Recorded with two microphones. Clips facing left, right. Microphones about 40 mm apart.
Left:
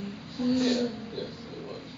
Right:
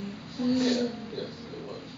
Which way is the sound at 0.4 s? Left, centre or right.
Centre.